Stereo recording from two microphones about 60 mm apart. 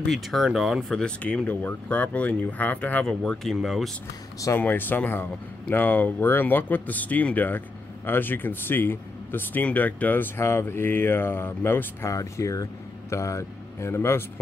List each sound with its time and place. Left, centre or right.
0.1 s speech: centre
0.8 s speech: centre
1.2 s speech: left
3.1 s speech: centre
4.6 s speech: left
10.4 s speech: left
12.1 s speech: left